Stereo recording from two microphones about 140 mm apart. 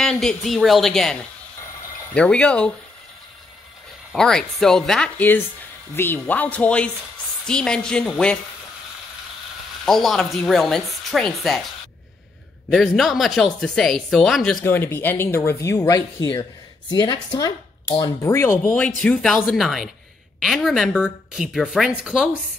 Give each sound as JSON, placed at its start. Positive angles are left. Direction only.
{"t": 0.0, "sound": "a woman's voice", "side_deg": 5}
{"t": 2.1, "sound": "speech", "side_deg": 5}
{"t": 4.1, "sound": "a woman's voice", "side_deg": 5}
{"t": 9.8, "sound": "a woman's voice", "side_deg": 0}
{"t": 12.6, "sound": "a woman's voice", "side_deg": 0}
{"t": 14.6, "sound": "a woman's voice", "side_deg": 15}